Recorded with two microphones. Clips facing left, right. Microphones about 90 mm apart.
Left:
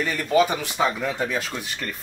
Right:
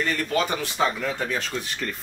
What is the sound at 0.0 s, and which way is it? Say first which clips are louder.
Speech: left 4 dB; 10° left (ahead or behind).